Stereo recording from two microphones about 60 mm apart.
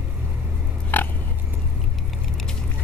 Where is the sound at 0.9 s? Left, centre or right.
Left.